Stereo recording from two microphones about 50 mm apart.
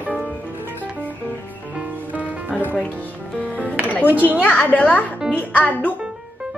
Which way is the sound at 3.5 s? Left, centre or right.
Left.